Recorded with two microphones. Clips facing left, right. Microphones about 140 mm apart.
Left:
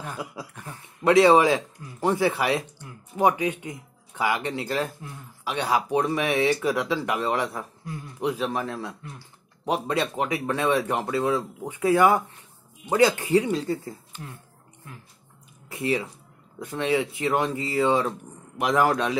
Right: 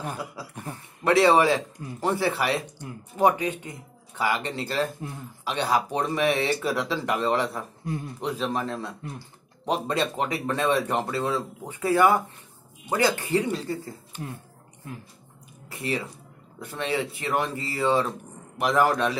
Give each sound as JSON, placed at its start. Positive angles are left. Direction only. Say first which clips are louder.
{"t": 1.0, "sound": "speech", "louder": "left 2 dB", "side_deg": 15}
{"t": 15.7, "sound": "speech", "louder": "left 4 dB", "side_deg": 20}